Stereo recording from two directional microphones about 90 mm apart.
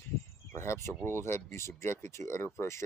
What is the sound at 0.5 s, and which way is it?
Speech, 30° left (ahead or behind).